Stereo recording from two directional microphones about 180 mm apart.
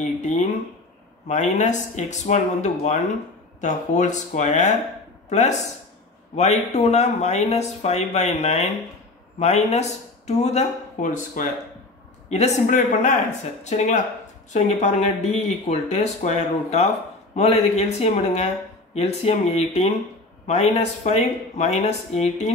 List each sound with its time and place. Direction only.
0.0 s a man's voice: 40° left (ahead or behind)